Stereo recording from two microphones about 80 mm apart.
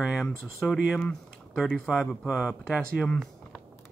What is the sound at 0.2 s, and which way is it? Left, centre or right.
Speech, centre.